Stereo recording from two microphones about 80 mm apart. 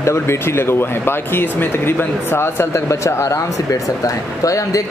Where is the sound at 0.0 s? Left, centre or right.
Left.